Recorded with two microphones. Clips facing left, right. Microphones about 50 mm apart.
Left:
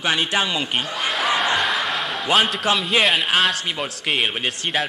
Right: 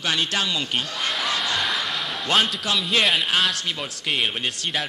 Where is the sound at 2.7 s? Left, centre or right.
Left.